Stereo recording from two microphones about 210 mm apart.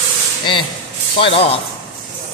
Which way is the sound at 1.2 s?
30° left (ahead or behind).